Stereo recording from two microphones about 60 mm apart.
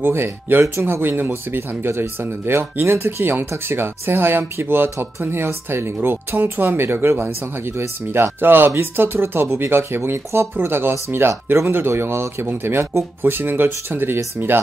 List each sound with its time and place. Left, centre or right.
0.0 s speech: right